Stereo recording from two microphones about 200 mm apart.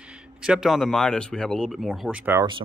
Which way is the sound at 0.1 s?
5° right (ahead or behind).